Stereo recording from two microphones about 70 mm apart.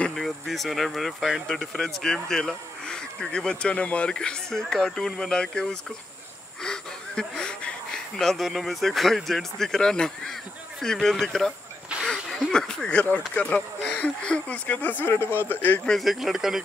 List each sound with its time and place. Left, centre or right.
0.1 s speech: centre
6.6 s wheeze: centre
8.2 s speech: centre; by 15.8 s left
15.8 s speech: centre